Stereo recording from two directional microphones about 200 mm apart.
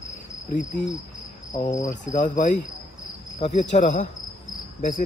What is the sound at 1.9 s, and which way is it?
Speech, 40° left (ahead or behind).